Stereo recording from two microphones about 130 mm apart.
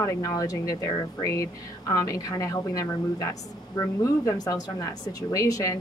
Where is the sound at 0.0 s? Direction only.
25° left (ahead or behind).